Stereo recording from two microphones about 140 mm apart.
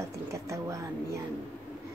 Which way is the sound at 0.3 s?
20° right (ahead or behind).